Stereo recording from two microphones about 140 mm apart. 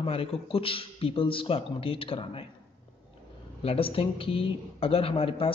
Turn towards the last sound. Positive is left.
turn(degrees=40)  # may be behind; listen again after turning